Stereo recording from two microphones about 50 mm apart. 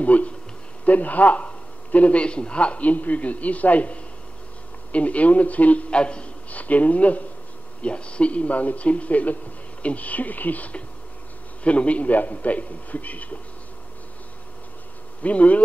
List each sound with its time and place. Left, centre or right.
0.0 s a man's voice: left
15.2 s a man's voice: left